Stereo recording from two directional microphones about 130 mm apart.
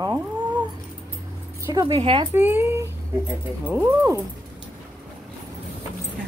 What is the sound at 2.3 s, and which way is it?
Speech, 15° right (ahead or behind).